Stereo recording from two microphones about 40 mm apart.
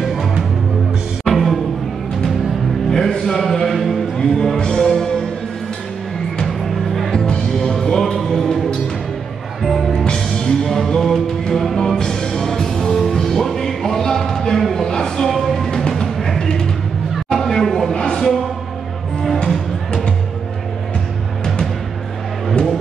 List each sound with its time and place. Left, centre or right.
0.0 s music: centre
2.9 s music: centre
3.3 s a sound: centre
4.2 s music: centre
6.4 s music: centre
7.1 s music: centre
9.6 s music: centre
10.0 s music: centre
17.3 s a sound: centre
17.9 s music: centre